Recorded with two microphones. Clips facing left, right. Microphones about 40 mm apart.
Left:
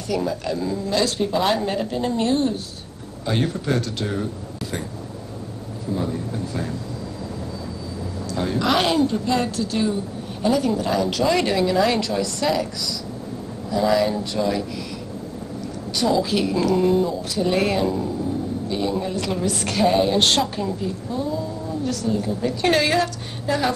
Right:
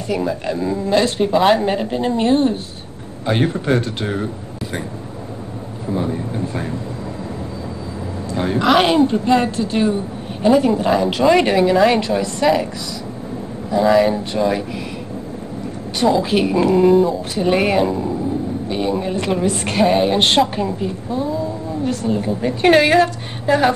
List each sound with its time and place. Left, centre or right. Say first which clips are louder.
0.1 s speech: right 3 dB; right
5.9 s speech: right 4 dB; right
8.4 s a woman's voice: right 6 dB; right
13.7 s speech: right 5 dB; right
16.0 s speech: right 5 dB; right
16.9 s speech: right 6 dB; centre
17.4 s speech: right 4 dB; right